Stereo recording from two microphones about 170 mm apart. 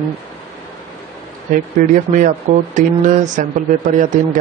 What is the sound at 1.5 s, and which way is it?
Speech, 55° right (ahead or behind).